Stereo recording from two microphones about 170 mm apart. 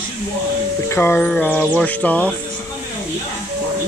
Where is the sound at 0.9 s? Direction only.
10° left (ahead or behind).